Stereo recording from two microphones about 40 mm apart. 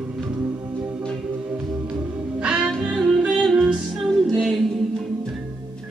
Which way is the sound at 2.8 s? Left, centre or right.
Centre.